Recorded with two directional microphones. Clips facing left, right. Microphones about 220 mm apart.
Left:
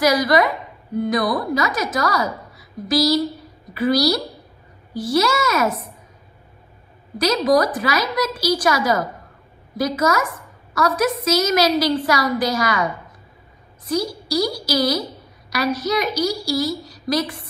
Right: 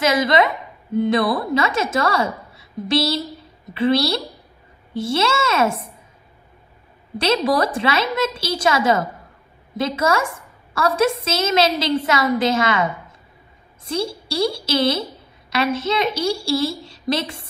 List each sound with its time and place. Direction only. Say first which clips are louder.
0.0 s a woman's voice: left 1 dB; 25° right (ahead or behind)
7.2 s a woman's voice: left 2 dB; 30° right (ahead or behind)